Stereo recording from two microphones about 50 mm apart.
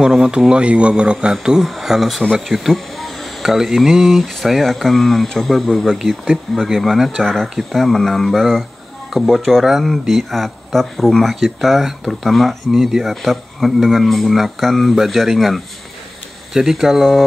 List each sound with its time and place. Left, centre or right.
0.0 s speech: centre
2.3 s a sound: centre
3.5 s speech: centre
5.9 s speech: centre
7.8 s speech: centre